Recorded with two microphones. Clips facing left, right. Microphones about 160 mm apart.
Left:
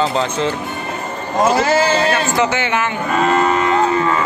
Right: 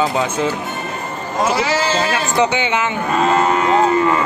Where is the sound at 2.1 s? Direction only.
15° right (ahead or behind).